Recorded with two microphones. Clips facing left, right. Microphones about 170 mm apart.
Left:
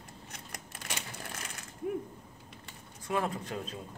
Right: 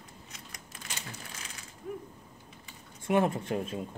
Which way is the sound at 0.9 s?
60° left (ahead or behind).